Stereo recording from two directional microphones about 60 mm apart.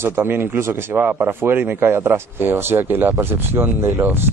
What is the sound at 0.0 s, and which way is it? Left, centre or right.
A man's voice, right.